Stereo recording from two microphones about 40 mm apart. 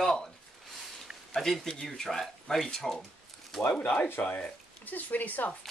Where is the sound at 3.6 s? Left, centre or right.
Left.